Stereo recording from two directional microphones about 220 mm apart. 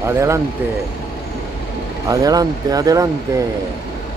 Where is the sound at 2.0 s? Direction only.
15° right (ahead or behind).